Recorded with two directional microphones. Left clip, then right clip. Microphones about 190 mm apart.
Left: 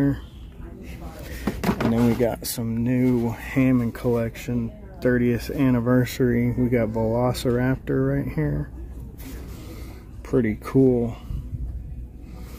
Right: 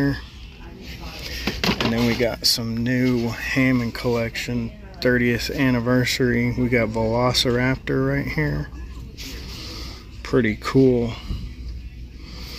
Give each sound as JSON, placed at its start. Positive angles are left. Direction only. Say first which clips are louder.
{"t": 1.7, "sound": "a sound", "louder": "even", "side_deg": 0}
{"t": 2.0, "sound": "speech", "louder": "right 3 dB", "side_deg": 15}
{"t": 2.6, "sound": "speech", "louder": "right 1 dB", "side_deg": 5}
{"t": 10.2, "sound": "speech", "louder": "right 3 dB", "side_deg": -5}